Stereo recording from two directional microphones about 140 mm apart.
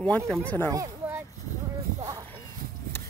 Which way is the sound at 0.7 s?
25° right (ahead or behind).